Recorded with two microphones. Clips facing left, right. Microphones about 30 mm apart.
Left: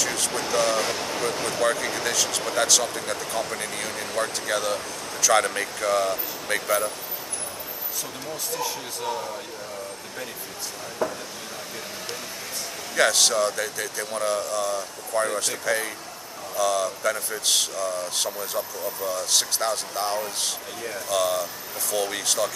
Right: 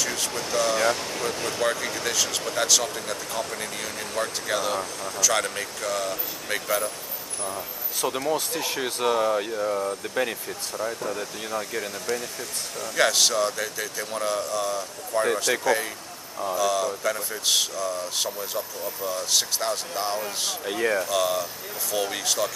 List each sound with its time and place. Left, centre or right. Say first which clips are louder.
0.0 s ocean: left 1 dB; centre
0.3 s ocean: left 2 dB; centre
0.9 s speech: left 2 dB; centre
2.1 s speech: left 1 dB; centre
8.3 s speech: right 4 dB; right
12.9 s speech: left 1 dB; centre
20.6 s speech: right 9 dB; right
21.1 s speech: even; centre